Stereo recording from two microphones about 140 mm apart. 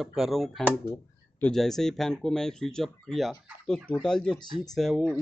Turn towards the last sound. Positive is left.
turn(degrees=0)  # may be behind; listen again after turning